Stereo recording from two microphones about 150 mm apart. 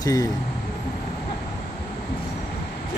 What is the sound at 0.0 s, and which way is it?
Speech, 25° left (ahead or behind).